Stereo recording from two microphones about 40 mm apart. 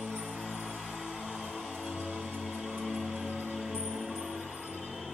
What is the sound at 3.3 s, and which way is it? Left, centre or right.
Music, right.